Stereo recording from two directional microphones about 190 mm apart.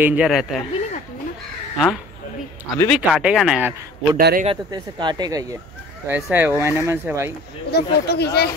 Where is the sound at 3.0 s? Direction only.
5° right (ahead or behind).